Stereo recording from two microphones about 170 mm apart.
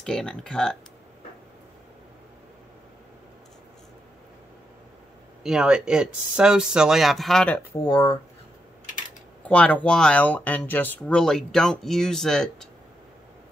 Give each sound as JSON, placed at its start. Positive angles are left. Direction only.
{"t": 0.0, "sound": "speech", "side_deg": 5}
{"t": 5.4, "sound": "speech", "side_deg": -5}
{"t": 7.8, "sound": "speech", "side_deg": 25}
{"t": 9.4, "sound": "speech", "side_deg": 10}